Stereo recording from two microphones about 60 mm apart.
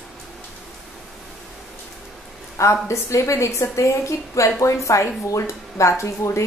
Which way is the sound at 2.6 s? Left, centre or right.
Left.